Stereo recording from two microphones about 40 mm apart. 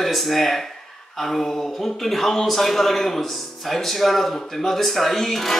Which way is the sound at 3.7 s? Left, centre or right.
Centre.